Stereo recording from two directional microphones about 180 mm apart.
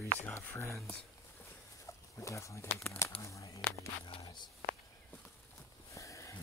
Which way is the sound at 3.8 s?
20° left (ahead or behind).